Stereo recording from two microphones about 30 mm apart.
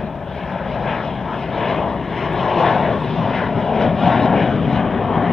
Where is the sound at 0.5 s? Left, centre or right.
Centre.